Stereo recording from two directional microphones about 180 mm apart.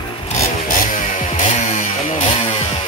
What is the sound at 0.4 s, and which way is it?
Chainsaw, 45° left (ahead or behind).